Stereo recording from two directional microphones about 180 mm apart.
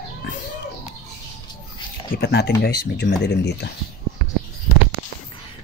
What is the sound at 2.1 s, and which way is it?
Speech, 60° left (ahead or behind).